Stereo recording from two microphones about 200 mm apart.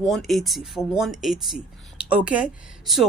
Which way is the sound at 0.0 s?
Centre (ahead or behind).